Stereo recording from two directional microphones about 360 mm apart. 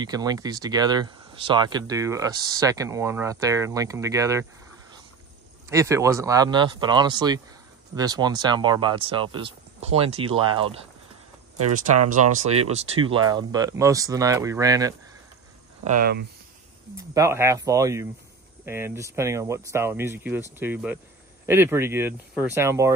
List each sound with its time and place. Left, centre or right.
0.0 s speech: centre
5.7 s speech: centre
11.5 s speech: right
12.1 s speech: centre
15.8 s speech: right
16.9 s speech: centre